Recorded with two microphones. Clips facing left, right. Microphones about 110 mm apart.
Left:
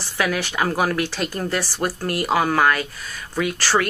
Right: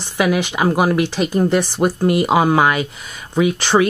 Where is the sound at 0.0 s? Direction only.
15° right (ahead or behind).